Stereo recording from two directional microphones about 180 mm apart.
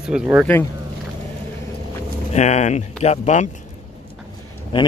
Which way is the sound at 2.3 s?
40° left (ahead or behind).